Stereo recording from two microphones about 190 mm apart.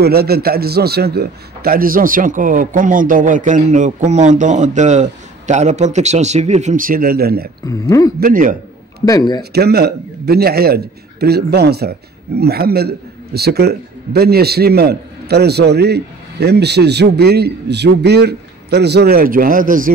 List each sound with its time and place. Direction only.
0.0 s a man's voice: 55° right (ahead or behind)
7.6 s speech: 15° left (ahead or behind)
8.2 s a man's voice: 45° right (ahead or behind)
9.0 s speech: 20° left (ahead or behind)
9.4 s a man's voice: 60° right (ahead or behind)